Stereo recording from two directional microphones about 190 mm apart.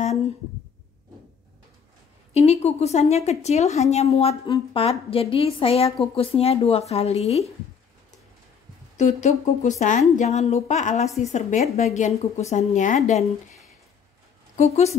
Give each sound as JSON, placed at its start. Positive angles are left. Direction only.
{"t": 2.3, "sound": "a woman's voice", "side_deg": 35}
{"t": 8.9, "sound": "a woman's voice", "side_deg": 40}
{"t": 14.6, "sound": "a woman's voice", "side_deg": 35}